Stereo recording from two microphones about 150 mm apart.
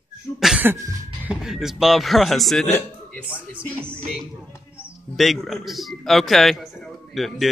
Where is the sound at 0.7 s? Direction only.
20° right (ahead or behind).